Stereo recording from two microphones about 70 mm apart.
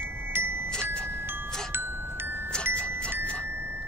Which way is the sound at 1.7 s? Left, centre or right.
Right.